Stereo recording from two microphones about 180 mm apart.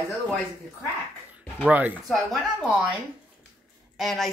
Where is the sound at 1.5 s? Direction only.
5° right (ahead or behind).